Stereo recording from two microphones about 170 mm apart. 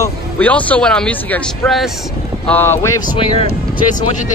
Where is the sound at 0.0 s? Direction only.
10° left (ahead or behind).